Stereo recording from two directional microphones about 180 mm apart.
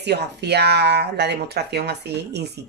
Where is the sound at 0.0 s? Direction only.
70° right (ahead or behind).